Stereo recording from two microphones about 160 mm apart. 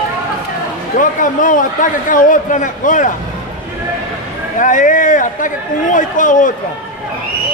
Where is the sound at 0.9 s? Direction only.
55° left (ahead or behind).